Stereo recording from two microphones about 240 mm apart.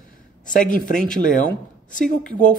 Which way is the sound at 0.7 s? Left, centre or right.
Left.